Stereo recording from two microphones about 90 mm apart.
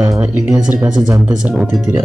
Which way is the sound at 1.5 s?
5° right (ahead or behind).